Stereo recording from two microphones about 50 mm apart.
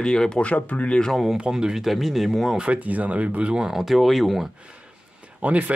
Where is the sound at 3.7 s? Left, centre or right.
Centre.